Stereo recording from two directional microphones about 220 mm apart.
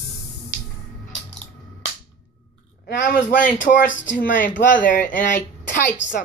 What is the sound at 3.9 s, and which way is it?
Speech, 60° left (ahead or behind).